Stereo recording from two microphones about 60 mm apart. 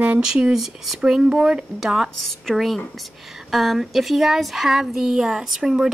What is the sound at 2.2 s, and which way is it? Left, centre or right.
A woman's voice, centre.